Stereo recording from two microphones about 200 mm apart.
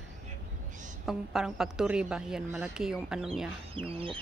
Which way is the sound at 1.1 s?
Centre (ahead or behind).